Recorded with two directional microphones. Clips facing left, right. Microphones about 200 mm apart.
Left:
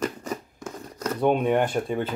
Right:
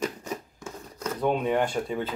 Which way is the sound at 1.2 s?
20° left (ahead or behind).